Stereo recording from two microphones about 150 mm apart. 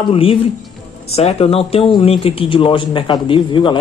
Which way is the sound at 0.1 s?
40° left (ahead or behind).